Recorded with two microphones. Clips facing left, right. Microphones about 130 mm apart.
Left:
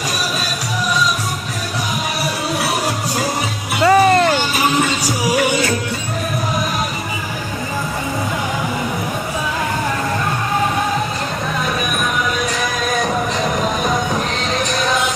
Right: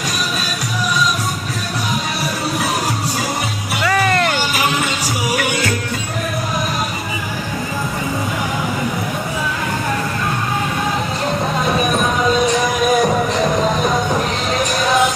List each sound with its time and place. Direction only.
3.8 s music: 25° left (ahead or behind)